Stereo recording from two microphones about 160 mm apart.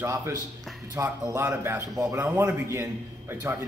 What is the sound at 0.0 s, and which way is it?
A man's voice, 20° right (ahead or behind).